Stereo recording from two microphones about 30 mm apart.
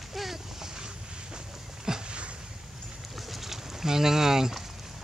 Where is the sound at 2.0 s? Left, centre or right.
Right.